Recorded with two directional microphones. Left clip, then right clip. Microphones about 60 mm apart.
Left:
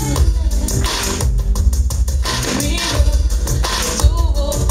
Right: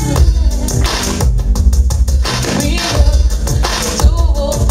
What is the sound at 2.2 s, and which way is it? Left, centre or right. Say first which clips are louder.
Music: right 3 dB; right.